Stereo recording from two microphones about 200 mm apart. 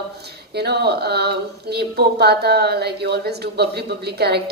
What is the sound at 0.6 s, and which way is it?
A woman's voice, 55° right (ahead or behind).